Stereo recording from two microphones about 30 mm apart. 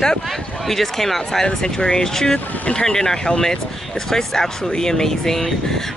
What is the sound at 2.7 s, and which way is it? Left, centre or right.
Speech, left.